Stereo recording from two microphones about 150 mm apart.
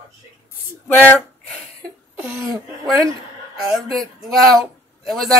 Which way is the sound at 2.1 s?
15° right (ahead or behind).